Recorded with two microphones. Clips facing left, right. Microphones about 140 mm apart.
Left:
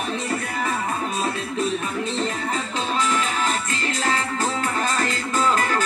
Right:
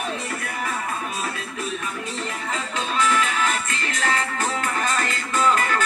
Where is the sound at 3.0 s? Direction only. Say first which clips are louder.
Right 3 dB; 30° left (ahead or behind).